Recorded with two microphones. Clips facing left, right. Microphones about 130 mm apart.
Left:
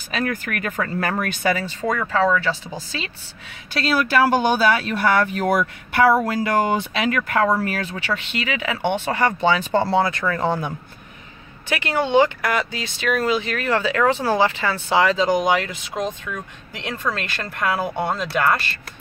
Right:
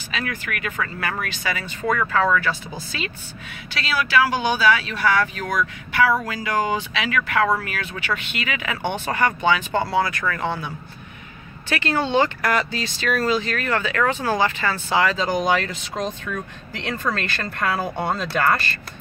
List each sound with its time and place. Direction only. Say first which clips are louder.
0.1 s speech: left 4 dB; 40° left (ahead or behind)
1.9 s speech: even; 15° left (ahead or behind)
3.7 s speech: left 2 dB; 45° left (ahead or behind); by 10.4 s 25° left (ahead or behind)
10.4 s speech: left 6 dB; 40° left (ahead or behind)
11.7 s speech: left 2 dB; 15° left (ahead or behind)